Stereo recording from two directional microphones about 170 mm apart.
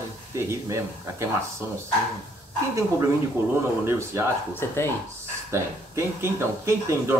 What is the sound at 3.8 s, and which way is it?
Speech, 15° right (ahead or behind).